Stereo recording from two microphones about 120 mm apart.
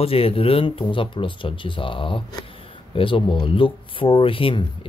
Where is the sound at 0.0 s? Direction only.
55° left (ahead or behind).